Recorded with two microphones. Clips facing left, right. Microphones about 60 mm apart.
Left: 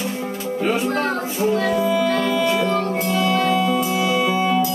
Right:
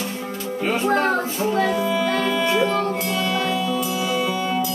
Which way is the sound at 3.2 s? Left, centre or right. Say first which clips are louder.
Left 6 dB; left.